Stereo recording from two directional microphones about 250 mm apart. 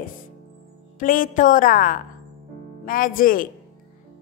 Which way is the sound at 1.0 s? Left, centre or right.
Left.